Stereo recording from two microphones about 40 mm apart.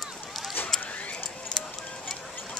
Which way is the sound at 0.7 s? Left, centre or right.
Centre.